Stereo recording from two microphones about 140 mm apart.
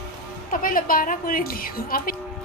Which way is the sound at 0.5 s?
85° left.